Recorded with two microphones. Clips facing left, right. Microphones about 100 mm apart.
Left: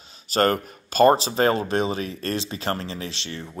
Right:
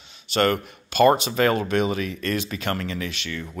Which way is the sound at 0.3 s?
40° left (ahead or behind).